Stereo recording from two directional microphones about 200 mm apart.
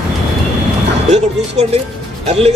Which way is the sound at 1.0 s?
35° right (ahead or behind).